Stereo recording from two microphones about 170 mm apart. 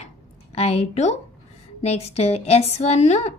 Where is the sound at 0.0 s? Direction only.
35° left (ahead or behind).